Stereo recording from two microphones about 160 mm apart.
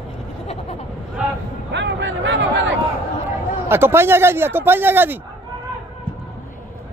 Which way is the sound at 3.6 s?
15° right (ahead or behind).